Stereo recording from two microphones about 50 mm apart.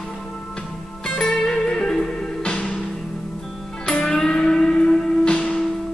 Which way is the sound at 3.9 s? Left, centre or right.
Left.